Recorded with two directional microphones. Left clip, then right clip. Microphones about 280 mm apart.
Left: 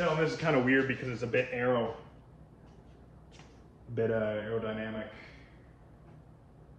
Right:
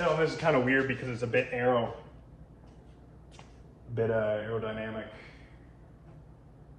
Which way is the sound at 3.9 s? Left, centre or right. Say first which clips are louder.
Right 2 dB; centre.